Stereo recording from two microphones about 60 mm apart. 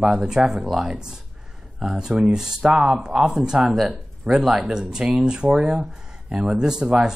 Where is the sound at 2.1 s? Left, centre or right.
Right.